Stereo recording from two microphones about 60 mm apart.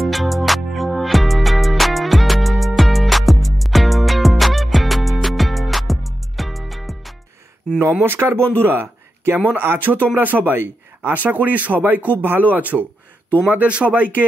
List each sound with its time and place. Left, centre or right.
0.0 s music: centre
8.0 s speech: right